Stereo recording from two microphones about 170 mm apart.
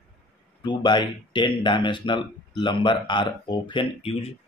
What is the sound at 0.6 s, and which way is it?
Speech, 25° left (ahead or behind).